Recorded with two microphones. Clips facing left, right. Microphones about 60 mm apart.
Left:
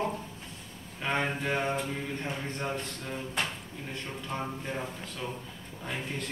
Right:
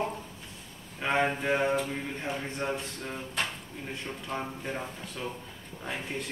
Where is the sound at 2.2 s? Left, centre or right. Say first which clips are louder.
Right 4 dB; centre.